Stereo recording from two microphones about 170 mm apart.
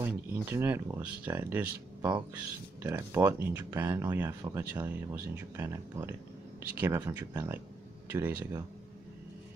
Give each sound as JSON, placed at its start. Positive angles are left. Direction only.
{"t": 0.0, "sound": "speech", "side_deg": -15}
{"t": 2.0, "sound": "speech", "side_deg": -25}